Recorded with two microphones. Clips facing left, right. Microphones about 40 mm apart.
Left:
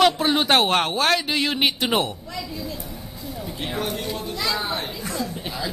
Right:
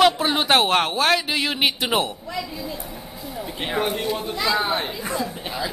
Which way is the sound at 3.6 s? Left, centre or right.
Right.